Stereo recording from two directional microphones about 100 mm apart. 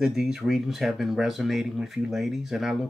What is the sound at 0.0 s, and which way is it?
Speech, 5° right (ahead or behind).